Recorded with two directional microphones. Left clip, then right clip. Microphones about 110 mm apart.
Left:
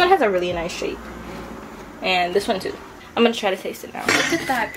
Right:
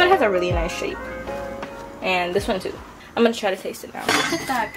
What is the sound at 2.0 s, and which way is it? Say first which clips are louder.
Speech: left 2 dB; 10° right (ahead or behind).